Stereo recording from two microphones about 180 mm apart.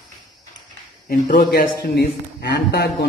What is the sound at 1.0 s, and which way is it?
A man's voice, 55° left (ahead or behind).